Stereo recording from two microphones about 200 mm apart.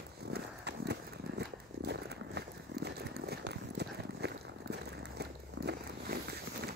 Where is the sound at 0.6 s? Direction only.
55° right (ahead or behind).